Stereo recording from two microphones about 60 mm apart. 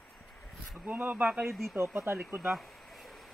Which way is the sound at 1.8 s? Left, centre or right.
Right.